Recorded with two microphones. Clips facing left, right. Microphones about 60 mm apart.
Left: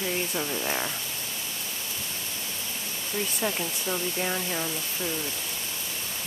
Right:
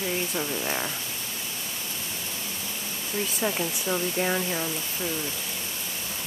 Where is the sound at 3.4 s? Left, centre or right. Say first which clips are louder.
Right 4 dB; centre.